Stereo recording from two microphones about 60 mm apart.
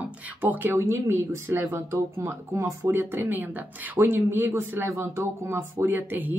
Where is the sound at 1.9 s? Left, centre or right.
Right.